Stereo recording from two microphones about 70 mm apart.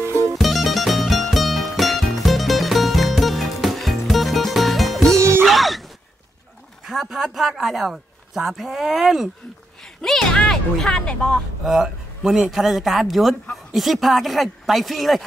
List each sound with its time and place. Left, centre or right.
0.0 s music: right
0.4 s music: centre
5.1 s music: right
5.4 s music: centre
6.9 s speech: centre
10.0 s speech: centre
11.6 s speech: centre